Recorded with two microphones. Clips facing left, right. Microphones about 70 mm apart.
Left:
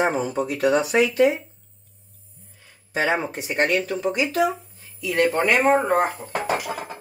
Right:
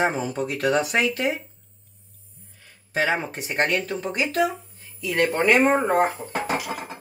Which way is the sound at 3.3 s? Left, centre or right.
Right.